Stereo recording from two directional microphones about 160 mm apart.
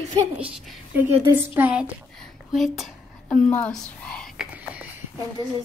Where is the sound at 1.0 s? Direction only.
15° right (ahead or behind).